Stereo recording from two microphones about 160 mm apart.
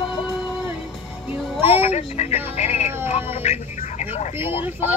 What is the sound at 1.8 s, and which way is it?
Speech, 40° left (ahead or behind).